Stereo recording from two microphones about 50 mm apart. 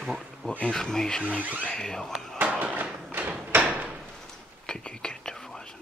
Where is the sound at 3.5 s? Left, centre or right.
Right.